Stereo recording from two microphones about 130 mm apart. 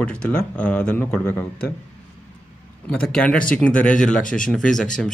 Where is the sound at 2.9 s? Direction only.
5° left (ahead or behind).